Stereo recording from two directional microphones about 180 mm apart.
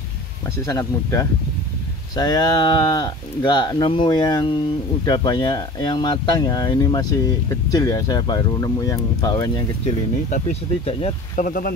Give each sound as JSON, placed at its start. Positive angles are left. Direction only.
{"t": 0.7, "sound": "speech", "side_deg": 20}
{"t": 10.3, "sound": "speech", "side_deg": 35}
{"t": 11.4, "sound": "speech", "side_deg": 50}